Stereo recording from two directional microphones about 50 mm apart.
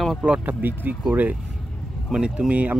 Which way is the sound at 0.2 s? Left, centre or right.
Right.